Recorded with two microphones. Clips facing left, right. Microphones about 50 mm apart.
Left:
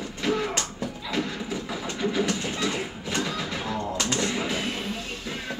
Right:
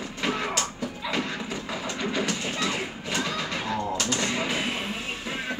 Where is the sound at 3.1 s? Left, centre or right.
Centre.